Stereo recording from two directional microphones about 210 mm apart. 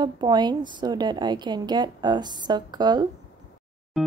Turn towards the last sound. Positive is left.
turn(degrees=0)  # may be behind; listen again after turning